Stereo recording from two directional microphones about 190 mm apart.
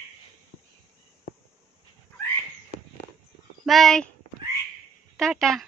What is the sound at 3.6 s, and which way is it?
Speech, centre (ahead or behind).